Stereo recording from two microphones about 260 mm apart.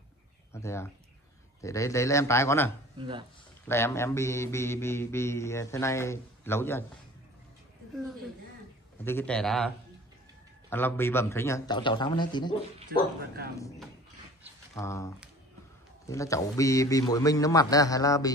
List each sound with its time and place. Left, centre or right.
0.5 s mantra: centre
3.0 s speech: centre
3.6 s mantra: centre
9.0 s a man's voice: centre
10.7 s mantra: centre
14.8 s mantra: centre